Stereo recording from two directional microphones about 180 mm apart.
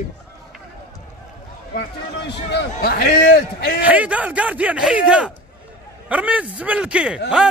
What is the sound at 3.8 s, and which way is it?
Speech, 10° right (ahead or behind).